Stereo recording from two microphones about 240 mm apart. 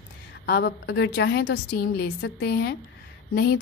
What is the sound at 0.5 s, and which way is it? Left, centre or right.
A woman's voice, left.